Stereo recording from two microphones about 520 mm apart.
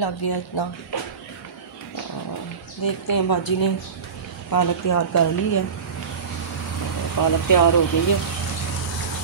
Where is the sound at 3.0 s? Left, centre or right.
Left.